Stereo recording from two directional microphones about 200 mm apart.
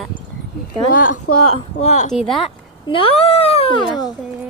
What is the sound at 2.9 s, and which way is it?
Speech, 30° left (ahead or behind).